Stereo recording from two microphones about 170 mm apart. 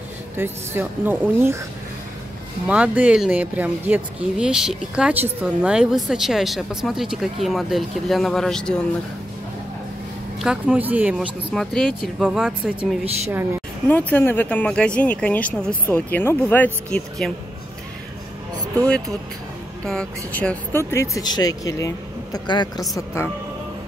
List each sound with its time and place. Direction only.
0.4 s speech: 10° right (ahead or behind)
2.7 s speech: 10° right (ahead or behind)
10.4 s speech: 5° right (ahead or behind)
13.8 s speech: 10° left (ahead or behind)
19.8 s speech: 5° left (ahead or behind)